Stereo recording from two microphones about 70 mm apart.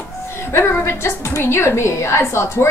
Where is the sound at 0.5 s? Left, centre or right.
Left.